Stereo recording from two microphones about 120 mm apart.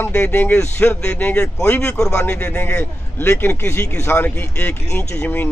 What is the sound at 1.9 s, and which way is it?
A man's voice, 5° left (ahead or behind).